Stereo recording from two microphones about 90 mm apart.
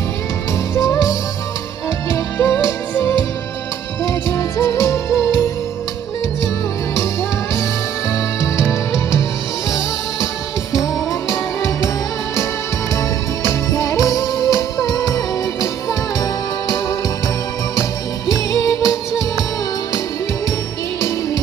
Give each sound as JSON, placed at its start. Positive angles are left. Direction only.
{"t": 0.7, "sound": "music", "side_deg": 35}
{"t": 2.3, "sound": "music", "side_deg": 20}
{"t": 8.1, "sound": "music", "side_deg": 35}
{"t": 11.1, "sound": "music", "side_deg": 35}
{"t": 13.5, "sound": "music", "side_deg": 35}
{"t": 18.3, "sound": "music", "side_deg": 40}